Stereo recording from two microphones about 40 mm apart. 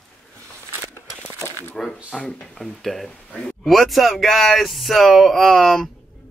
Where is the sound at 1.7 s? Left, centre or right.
Centre.